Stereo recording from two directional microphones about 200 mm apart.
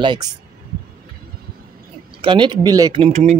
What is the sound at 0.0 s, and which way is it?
Speech, 20° right (ahead or behind).